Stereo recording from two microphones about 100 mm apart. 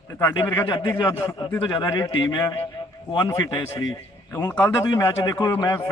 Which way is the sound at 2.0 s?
55° left (ahead or behind).